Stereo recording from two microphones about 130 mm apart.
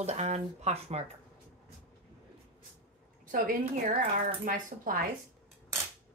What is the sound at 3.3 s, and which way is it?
Speech, 85° right.